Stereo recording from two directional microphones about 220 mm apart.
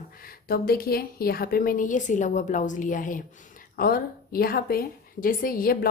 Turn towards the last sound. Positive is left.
turn(degrees=40)  # may be behind; listen again after turning